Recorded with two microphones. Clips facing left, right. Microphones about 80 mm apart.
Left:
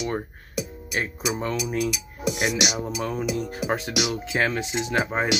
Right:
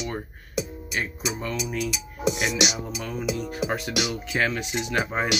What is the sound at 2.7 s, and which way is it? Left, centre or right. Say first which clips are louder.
Music: left 4 dB; left.